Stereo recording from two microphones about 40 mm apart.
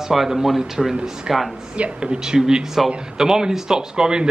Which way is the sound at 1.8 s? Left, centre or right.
Right.